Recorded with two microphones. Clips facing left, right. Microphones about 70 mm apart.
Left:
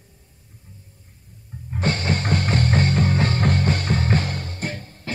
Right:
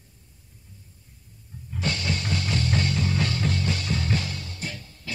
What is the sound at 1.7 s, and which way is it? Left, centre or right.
Music, left.